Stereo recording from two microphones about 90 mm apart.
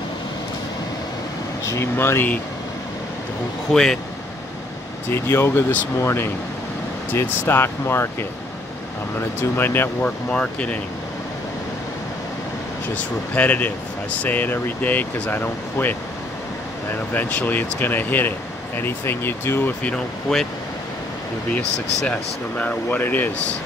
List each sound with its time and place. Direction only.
1.7 s speech: 30° left (ahead or behind)
3.7 s a man's voice: 5° left (ahead or behind)
5.1 s speech: 25° left (ahead or behind)
9.4 s speech: 25° left (ahead or behind)
10.0 s speech: 10° left (ahead or behind)
12.9 s speech: 15° left (ahead or behind)
17.1 s speech: 20° left (ahead or behind)
19.8 s speech: 10° left (ahead or behind)
21.5 s speech: 15° left (ahead or behind)